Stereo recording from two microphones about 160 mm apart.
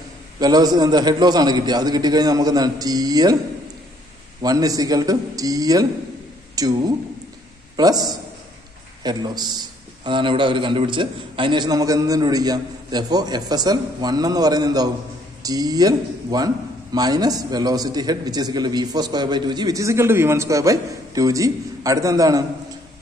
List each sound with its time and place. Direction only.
0.4 s a man's voice: 25° right (ahead or behind)
4.4 s a man's voice: 25° right (ahead or behind)